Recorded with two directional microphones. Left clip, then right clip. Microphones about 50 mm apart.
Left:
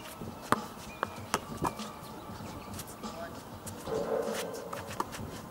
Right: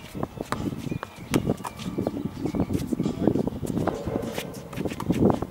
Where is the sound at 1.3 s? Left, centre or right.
Centre.